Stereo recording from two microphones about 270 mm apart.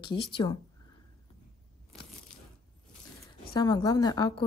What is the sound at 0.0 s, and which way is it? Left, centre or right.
Speech, centre.